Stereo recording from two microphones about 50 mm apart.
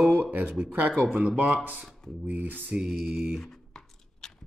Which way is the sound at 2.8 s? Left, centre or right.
Centre.